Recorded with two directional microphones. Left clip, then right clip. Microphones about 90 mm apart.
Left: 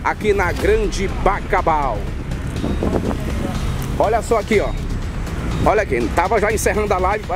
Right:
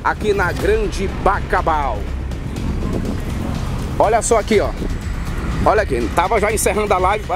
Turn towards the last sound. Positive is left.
turn(degrees=-20)  # may be behind; listen again after turning